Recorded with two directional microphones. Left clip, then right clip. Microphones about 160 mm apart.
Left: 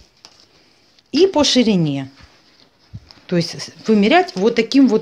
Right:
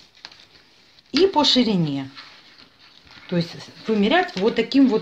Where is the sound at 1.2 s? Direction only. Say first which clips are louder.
Left 3 dB; 50° left (ahead or behind).